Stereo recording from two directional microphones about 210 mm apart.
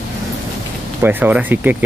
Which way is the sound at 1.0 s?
10° right (ahead or behind).